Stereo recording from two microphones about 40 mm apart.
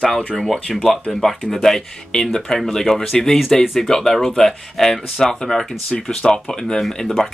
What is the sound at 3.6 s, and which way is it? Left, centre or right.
Speech, centre.